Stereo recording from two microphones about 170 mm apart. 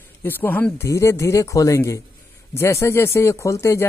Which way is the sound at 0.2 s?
10° left (ahead or behind).